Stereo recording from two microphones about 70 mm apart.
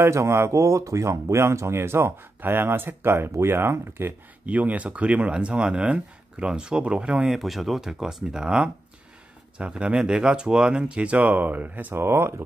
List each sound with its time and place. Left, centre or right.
0.0 s speech: right
4.5 s speech: right
7.3 s speech: centre; by 12.4 s right